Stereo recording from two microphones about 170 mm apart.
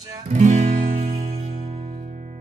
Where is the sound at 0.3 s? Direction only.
45° right (ahead or behind).